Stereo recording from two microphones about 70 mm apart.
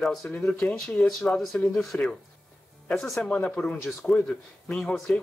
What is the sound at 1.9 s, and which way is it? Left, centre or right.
Speech, left.